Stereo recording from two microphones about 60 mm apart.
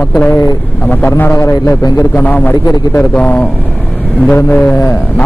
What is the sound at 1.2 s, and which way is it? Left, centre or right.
Speech, left.